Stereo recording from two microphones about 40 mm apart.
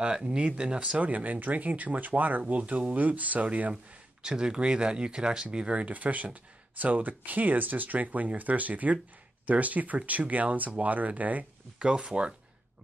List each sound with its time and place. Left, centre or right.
0.0 s speech: right
1.0 s speech: right
4.2 s speech: right
5.9 s speech: right
11.8 s speech: right